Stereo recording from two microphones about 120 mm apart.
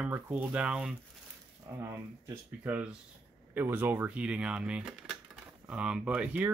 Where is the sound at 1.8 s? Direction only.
25° right (ahead or behind).